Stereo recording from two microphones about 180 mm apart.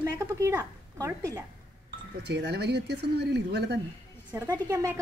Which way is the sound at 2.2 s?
70° right (ahead or behind).